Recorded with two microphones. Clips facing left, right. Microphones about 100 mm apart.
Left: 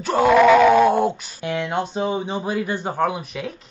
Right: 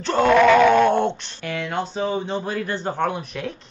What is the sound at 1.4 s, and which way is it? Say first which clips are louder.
Speech: left 3 dB; 20° left (ahead or behind).